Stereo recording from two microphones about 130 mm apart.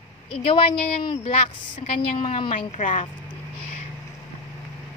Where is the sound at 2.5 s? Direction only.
70° left (ahead or behind).